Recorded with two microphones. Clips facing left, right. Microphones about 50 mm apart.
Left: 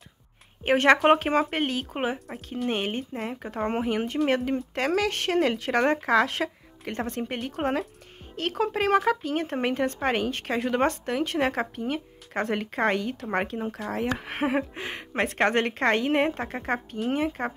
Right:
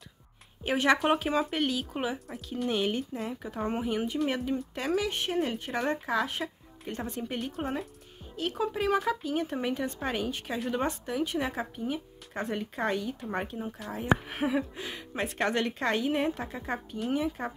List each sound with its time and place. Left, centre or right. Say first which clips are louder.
0.7 s speech: left 6 dB; left
6.9 s speech: left 4 dB; left
8.4 s speech: left 4 dB; left
14.1 s speech: right 3 dB; left